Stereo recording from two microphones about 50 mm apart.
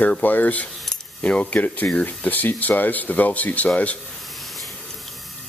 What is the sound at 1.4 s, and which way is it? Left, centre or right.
Speech, left.